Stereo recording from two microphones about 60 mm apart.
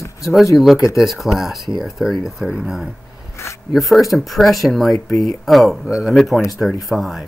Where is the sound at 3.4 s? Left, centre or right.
Left.